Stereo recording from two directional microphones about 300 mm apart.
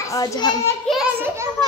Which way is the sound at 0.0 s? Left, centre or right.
Centre.